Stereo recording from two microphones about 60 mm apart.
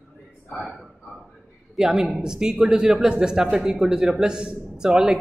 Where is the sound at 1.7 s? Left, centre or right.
Centre.